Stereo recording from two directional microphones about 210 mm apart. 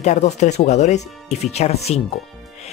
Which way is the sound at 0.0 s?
35° left (ahead or behind).